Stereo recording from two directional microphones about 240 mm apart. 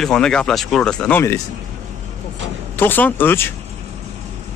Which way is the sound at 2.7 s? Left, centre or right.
Centre.